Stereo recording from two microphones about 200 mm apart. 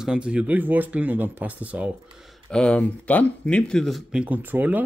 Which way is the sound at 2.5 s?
5° left (ahead or behind).